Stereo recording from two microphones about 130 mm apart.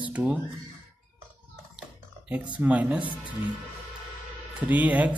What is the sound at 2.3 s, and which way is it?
Speech, 10° right (ahead or behind).